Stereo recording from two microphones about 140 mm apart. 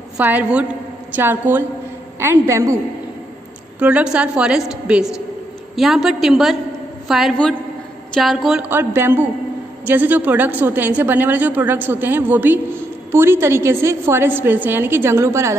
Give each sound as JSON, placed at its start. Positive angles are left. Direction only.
{"t": 0.2, "sound": "a woman's voice", "side_deg": -10}
{"t": 3.8, "sound": "a woman's voice", "side_deg": -5}
{"t": 8.6, "sound": "a woman's voice", "side_deg": -15}